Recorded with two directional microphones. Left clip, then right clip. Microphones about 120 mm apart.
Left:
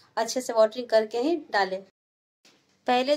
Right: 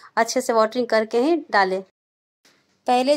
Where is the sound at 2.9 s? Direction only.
10° right (ahead or behind).